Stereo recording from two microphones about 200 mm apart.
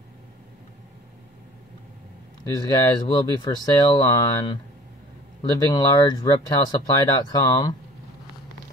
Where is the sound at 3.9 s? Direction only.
20° left (ahead or behind).